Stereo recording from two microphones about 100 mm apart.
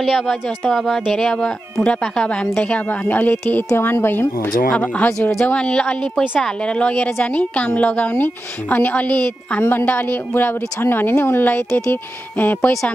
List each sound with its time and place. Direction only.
0.0 s a woman's voice: centre (ahead or behind); by 12.9 s 20° left (ahead or behind)